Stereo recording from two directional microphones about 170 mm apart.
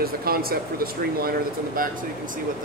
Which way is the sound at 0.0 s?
60° right (ahead or behind).